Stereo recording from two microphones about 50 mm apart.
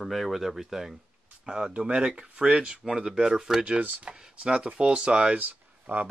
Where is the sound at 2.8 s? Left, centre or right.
Centre.